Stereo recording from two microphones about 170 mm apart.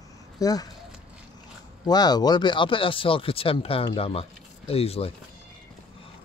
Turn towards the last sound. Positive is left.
turn(degrees=35)  # may be behind; listen again after turning